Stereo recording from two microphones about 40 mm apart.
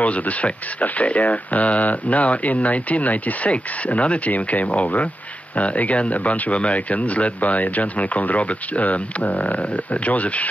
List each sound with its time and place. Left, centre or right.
0.0 s speech: left